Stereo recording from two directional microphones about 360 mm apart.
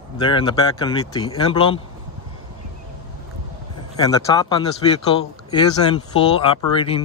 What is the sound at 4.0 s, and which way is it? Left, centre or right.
Speech, centre.